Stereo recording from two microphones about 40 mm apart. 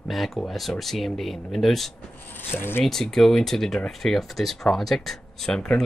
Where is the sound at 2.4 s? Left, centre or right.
Left.